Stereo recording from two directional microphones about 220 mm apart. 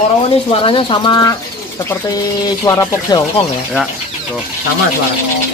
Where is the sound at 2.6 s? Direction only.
15° left (ahead or behind).